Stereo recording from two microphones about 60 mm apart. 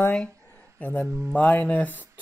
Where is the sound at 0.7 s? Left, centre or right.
Left.